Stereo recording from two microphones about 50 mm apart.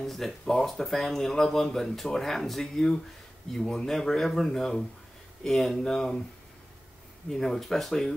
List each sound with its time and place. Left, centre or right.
0.0 s speech: centre
7.2 s speech: centre